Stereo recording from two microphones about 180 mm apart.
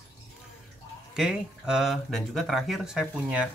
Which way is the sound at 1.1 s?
5° right (ahead or behind).